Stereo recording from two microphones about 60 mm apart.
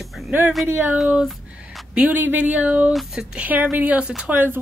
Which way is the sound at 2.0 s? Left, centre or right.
Right.